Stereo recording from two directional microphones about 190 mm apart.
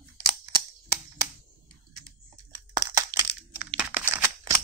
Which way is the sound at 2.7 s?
20° right (ahead or behind).